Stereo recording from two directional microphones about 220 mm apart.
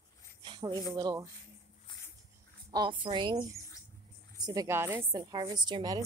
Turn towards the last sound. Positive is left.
turn(degrees=-20)  # may be behind; listen again after turning